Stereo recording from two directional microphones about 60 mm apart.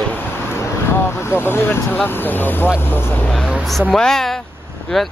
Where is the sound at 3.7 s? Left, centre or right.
Centre.